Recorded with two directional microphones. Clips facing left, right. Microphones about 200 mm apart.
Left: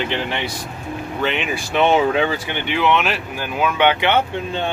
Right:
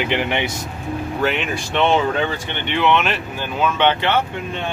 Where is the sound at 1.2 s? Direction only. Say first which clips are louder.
Even; centre (ahead or behind).